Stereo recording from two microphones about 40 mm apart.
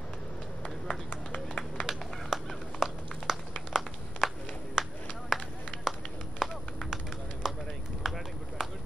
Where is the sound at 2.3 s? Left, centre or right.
Centre.